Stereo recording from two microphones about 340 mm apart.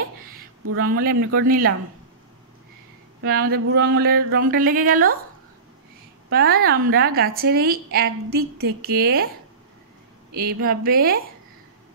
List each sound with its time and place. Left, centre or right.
0.2 s a sound: right
0.8 s a woman's voice: right
3.2 s a woman's voice: right
6.3 s a woman's voice: right
10.3 s a woman's voice: right